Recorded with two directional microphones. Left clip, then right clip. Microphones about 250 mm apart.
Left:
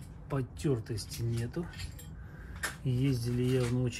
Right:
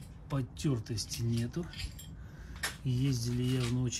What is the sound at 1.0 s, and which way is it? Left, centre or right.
Speech, centre.